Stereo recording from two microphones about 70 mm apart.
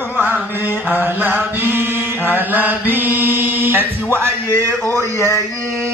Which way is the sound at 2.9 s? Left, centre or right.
Right.